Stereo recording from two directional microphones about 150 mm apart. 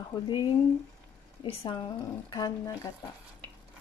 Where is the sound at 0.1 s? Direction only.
30° left (ahead or behind).